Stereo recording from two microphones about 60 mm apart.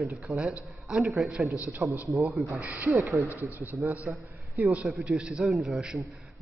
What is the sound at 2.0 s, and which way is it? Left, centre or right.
Speech, right.